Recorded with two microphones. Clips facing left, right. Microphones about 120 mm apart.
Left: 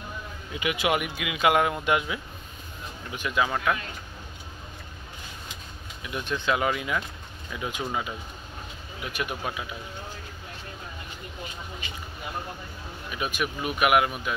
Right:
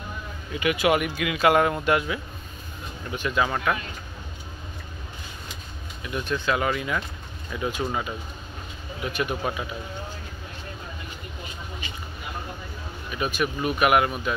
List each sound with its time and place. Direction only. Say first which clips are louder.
0.6 s speech: right 4 dB; 15° left (ahead or behind)
6.0 s speech: right 1 dB; 20° left (ahead or behind)
9.0 s speech: right 4 dB; 5° left (ahead or behind)
13.1 s speech: right 4 dB; 10° left (ahead or behind)